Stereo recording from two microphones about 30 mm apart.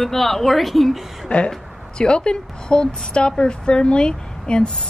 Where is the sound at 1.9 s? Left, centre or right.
Left.